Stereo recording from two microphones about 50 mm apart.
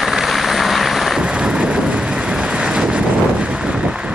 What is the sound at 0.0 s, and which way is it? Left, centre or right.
Vehicle, centre.